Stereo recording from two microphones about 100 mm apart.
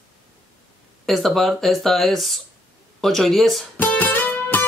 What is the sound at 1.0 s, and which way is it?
Speech, centre (ahead or behind).